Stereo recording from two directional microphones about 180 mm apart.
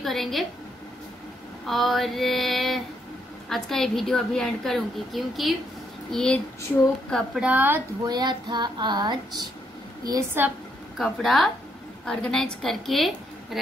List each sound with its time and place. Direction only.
0.0 s a woman's voice: centre (ahead or behind)
1.7 s a woman's voice: centre (ahead or behind)
8.1 s a sound: 25° right (ahead or behind)
10.0 s speech: 15° right (ahead or behind)
11.0 s a woman's voice: centre (ahead or behind)